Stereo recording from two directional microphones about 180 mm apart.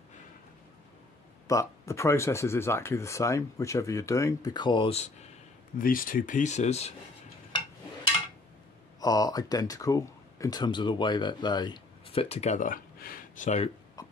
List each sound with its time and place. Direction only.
1.5 s speech: 15° left (ahead or behind); by 5.1 s 35° left (ahead or behind)
5.8 s speech: 50° left (ahead or behind)
9.0 s speech: 20° left (ahead or behind); by 13.7 s 40° left (ahead or behind)